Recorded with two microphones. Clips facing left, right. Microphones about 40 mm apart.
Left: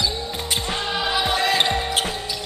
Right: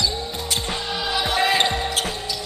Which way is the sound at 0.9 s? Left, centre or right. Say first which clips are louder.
Left 2 dB; centre.